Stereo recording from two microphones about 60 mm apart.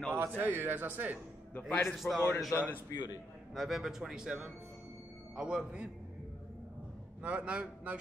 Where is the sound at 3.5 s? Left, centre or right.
Centre.